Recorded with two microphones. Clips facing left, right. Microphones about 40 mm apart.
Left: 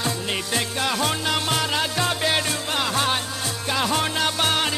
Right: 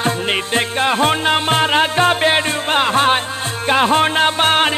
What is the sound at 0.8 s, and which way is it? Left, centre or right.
Music, right.